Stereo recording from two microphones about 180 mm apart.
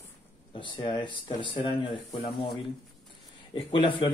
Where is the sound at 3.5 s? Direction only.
30° left (ahead or behind).